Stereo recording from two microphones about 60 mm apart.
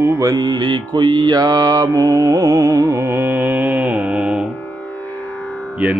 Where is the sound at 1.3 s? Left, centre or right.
Right.